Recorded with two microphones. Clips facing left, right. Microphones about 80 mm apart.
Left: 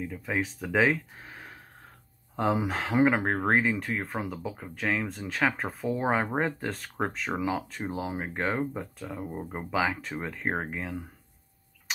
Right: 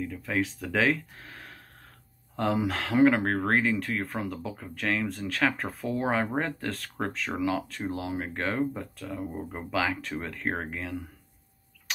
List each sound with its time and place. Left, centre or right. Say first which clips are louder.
0.0 s speech: right 1 dB; centre